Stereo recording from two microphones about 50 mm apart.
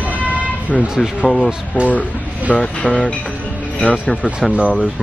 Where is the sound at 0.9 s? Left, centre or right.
Centre.